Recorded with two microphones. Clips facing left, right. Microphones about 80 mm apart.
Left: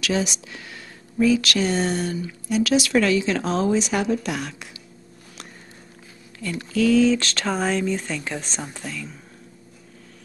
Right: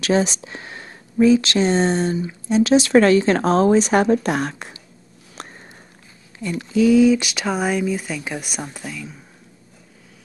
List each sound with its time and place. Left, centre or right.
0.0 s speech: right
6.6 s speech: centre